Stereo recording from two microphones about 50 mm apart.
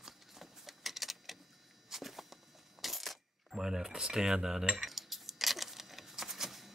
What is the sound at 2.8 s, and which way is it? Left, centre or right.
Coin, centre.